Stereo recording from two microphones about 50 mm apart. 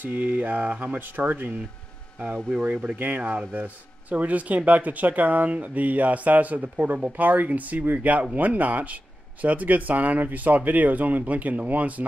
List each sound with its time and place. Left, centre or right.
0.0 s speech: right
2.6 s speech: right